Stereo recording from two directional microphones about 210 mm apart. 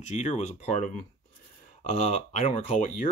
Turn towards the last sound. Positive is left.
turn(degrees=35)  # may be behind; listen again after turning